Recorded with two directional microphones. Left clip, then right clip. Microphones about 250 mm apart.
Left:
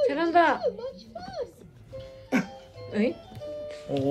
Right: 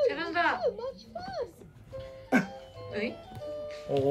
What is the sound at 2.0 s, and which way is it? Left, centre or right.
Music, right.